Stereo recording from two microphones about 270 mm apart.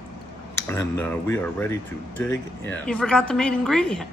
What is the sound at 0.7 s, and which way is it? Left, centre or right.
A woman's voice, centre.